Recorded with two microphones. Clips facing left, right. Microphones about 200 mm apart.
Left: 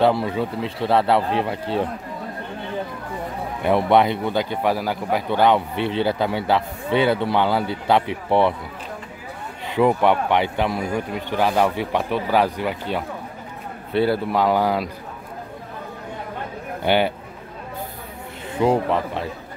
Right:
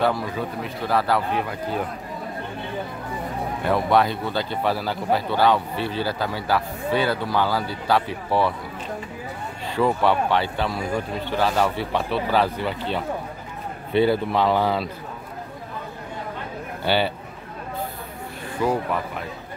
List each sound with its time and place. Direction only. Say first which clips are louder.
0.0 s a man's voice: left 4 dB; 25° left (ahead or behind)
3.6 s a man's voice: left 3 dB; 20° left (ahead or behind)
9.8 s speech: left 3 dB; 15° left (ahead or behind)
16.8 s speech: left 3 dB; 15° left (ahead or behind)
18.6 s a man's voice: left 4 dB; 25° left (ahead or behind)